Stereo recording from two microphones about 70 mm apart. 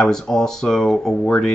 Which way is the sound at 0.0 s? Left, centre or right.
Centre.